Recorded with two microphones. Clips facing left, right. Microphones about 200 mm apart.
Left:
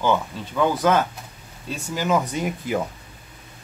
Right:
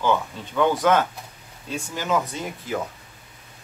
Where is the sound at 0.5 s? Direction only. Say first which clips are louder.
Even; 5° left (ahead or behind).